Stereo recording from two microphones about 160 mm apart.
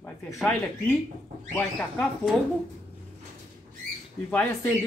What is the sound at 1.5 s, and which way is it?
Speech, 10° left (ahead or behind).